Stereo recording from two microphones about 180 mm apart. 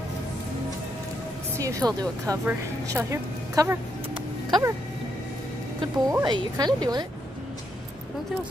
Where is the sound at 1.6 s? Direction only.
20° right (ahead or behind).